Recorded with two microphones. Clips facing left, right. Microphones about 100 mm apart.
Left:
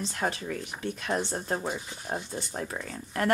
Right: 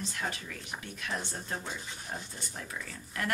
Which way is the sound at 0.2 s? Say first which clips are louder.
Left 7 dB; 45° left (ahead or behind).